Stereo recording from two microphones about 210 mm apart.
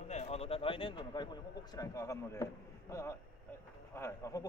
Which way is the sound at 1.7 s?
15° left (ahead or behind).